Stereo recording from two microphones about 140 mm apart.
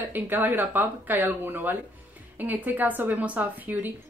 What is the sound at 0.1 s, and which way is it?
Speech, 15° right (ahead or behind).